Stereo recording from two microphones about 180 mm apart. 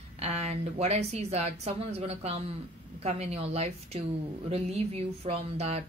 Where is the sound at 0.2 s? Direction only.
35° right (ahead or behind).